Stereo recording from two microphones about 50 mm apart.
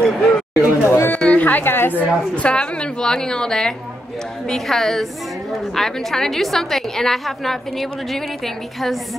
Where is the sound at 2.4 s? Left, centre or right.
Left; by 7.5 s centre.